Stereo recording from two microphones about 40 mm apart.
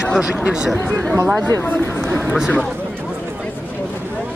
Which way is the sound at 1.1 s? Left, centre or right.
Right.